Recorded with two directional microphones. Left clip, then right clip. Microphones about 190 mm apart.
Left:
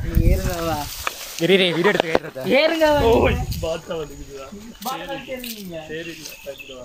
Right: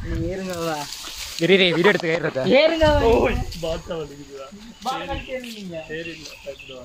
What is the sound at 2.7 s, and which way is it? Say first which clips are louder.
Speech: left 1 dB; 55° left (ahead or behind).